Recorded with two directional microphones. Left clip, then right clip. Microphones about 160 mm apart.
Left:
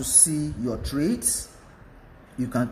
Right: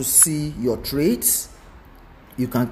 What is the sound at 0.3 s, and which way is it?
Speech, 20° right (ahead or behind).